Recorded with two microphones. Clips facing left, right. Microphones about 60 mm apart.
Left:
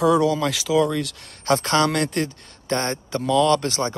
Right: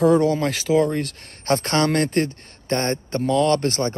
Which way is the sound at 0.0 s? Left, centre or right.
Right.